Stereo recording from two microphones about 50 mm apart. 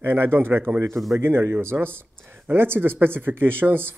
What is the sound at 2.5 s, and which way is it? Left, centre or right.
Speech, right.